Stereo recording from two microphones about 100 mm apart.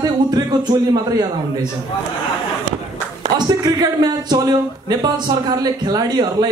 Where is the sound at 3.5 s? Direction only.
40° right (ahead or behind).